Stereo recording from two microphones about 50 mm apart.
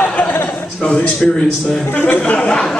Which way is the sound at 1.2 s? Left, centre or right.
Centre.